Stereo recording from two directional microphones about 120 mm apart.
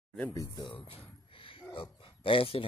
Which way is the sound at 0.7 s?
50° left (ahead or behind).